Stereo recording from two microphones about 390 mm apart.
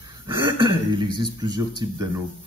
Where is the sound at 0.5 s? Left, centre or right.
Centre.